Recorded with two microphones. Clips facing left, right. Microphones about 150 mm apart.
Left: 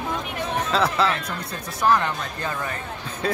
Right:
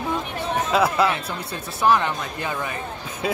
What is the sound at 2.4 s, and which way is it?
Speech, 15° right (ahead or behind).